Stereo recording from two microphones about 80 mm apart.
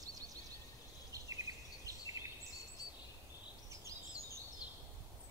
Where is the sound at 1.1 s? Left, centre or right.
Right.